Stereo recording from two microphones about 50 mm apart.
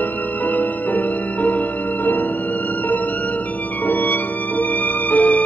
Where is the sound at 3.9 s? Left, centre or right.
Left.